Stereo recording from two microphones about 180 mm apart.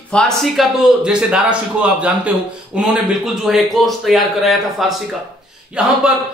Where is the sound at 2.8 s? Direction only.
Centre (ahead or behind).